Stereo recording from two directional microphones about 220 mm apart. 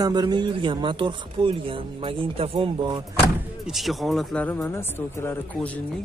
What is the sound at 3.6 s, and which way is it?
Speech, centre (ahead or behind).